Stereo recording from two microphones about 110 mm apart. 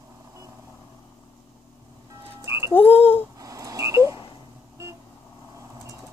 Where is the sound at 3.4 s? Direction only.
30° right (ahead or behind).